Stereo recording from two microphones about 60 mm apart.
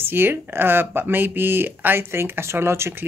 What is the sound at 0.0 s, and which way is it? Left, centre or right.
Speech, right.